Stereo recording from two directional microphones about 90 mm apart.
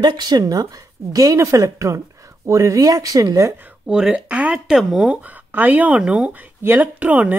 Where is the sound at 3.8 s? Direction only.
10° right (ahead or behind).